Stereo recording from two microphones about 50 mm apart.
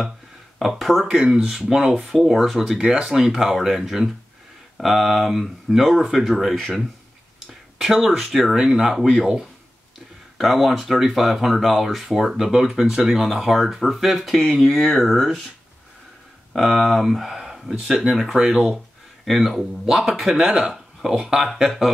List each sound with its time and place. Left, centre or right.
0.6 s speech: centre
2.8 s speech: right
3.1 s speech: centre
7.3 s a sound: centre
8.2 s speech: centre
10.3 s speech: centre
16.5 s speech: centre
20.7 s a sound: centre
21.2 s speech: centre